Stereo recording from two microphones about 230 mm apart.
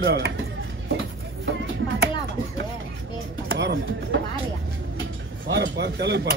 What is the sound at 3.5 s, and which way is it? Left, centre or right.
Speech, right.